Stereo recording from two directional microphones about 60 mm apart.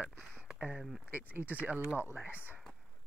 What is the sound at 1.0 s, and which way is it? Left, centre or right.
Speech, right.